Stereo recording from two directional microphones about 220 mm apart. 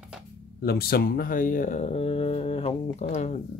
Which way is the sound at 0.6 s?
45° left (ahead or behind).